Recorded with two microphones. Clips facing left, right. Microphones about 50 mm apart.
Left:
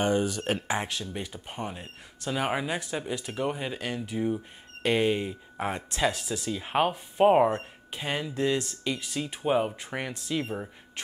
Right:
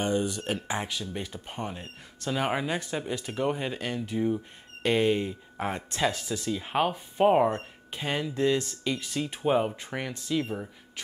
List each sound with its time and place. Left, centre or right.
0.5 s speech: left
1.5 s speech: centre